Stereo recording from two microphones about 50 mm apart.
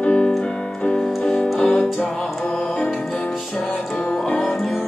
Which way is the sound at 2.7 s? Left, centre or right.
Centre.